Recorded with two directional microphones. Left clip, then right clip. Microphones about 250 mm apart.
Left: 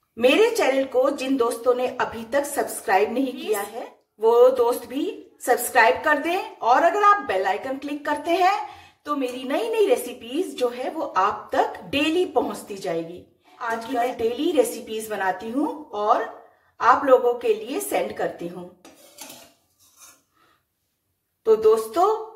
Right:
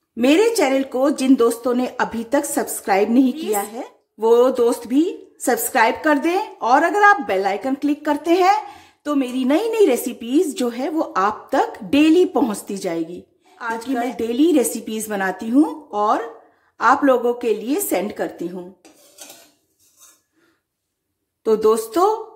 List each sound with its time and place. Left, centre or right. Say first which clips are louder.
0.2 s speech: right 2 dB; right
21.5 s speech: right 1 dB; right